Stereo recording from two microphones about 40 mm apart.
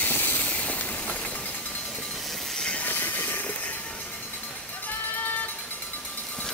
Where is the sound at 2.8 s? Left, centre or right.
Left.